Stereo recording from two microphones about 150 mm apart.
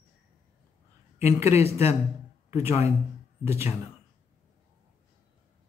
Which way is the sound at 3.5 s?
15° right (ahead or behind).